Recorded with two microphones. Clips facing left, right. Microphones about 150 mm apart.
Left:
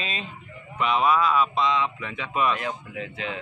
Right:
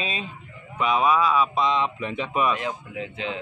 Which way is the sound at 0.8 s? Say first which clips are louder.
Right 1 dB; 10° right (ahead or behind).